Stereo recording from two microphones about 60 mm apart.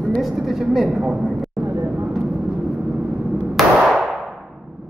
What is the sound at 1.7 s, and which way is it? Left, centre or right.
Vehicle, right.